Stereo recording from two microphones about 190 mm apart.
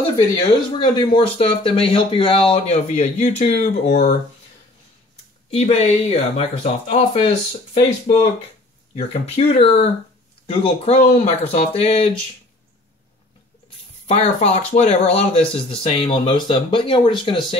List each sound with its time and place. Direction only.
0.4 s speech: 25° left (ahead or behind)
5.5 s speech: 35° left (ahead or behind)
14.0 s speech: 35° left (ahead or behind)